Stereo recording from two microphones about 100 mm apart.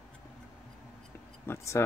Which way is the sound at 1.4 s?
30° left (ahead or behind).